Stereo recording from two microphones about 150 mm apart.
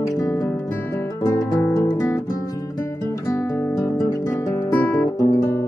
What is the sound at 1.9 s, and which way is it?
Guitar, 25° left (ahead or behind).